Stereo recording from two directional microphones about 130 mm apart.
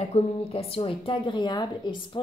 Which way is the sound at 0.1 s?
50° left (ahead or behind).